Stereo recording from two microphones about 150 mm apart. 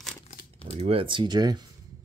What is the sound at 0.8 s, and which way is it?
Speech, 40° right (ahead or behind).